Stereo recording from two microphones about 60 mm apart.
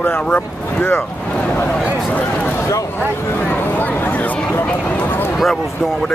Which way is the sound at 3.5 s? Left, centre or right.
Left.